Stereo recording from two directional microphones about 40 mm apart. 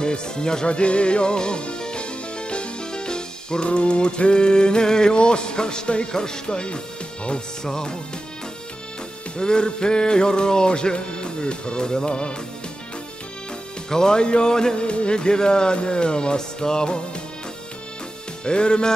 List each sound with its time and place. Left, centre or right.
0.0 s music: left
6.1 s speech: centre
9.4 s speech: left
13.8 s speech: centre
18.4 s speech: left